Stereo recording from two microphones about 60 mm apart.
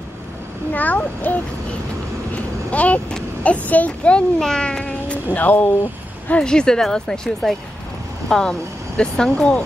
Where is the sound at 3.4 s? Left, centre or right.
Left.